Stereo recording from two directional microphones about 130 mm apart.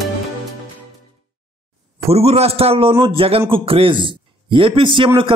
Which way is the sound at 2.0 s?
50° right (ahead or behind).